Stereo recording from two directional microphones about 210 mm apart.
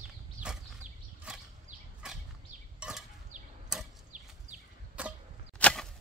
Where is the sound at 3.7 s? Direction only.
Centre (ahead or behind).